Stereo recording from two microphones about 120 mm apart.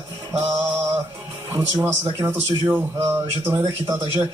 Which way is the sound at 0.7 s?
15° right (ahead or behind).